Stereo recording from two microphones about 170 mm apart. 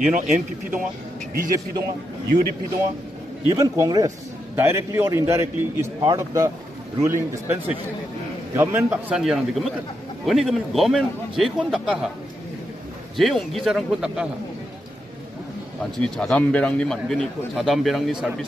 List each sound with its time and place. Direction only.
1.3 s speech: 60° right (ahead or behind)
3.4 s a man's voice: 20° right (ahead or behind)
9.1 s a man's voice: centre (ahead or behind)
13.1 s a man's voice: centre (ahead or behind)
15.8 s a man's voice: 5° left (ahead or behind)